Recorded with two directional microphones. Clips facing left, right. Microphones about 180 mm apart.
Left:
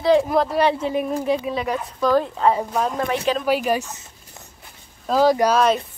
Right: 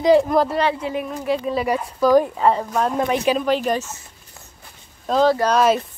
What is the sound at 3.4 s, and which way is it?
Speech, 10° left (ahead or behind).